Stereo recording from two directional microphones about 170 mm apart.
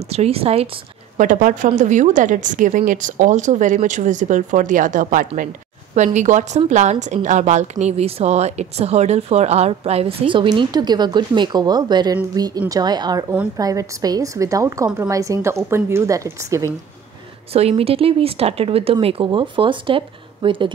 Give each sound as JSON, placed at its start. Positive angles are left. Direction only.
{"t": 0.1, "sound": "a woman's voice", "side_deg": -35}
{"t": 1.1, "sound": "a woman's voice", "side_deg": -50}
{"t": 17.5, "sound": "a woman's voice", "side_deg": -35}